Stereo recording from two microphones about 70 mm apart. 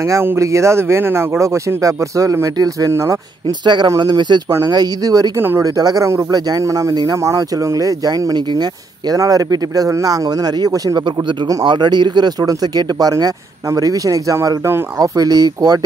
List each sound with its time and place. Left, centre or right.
0.0 s speech: right
2.5 s speech: right
2.9 s speech: right
3.4 s speech: right
4.0 s speech: right
4.6 s speech: right
6.6 s speech: right
11.2 s speech: right
13.7 s speech: right
15.0 s speech: right